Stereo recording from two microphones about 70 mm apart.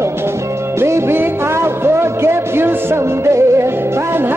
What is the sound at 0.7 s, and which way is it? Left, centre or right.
Music, right.